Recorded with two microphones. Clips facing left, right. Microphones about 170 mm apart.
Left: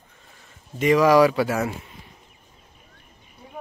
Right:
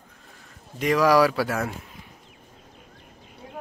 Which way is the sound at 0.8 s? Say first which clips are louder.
Left 3 dB; centre (ahead or behind).